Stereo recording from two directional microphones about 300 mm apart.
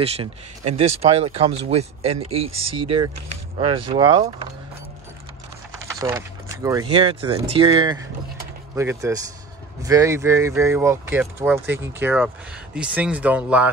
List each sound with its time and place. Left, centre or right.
0.0 s speech: centre
2.5 s speech: right
3.5 s speech: centre
5.9 s speech: centre